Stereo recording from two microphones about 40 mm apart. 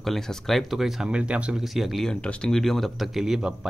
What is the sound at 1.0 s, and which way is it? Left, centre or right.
Speech, right.